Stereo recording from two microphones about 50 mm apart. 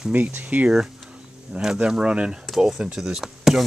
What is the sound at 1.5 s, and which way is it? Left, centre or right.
Speech, centre.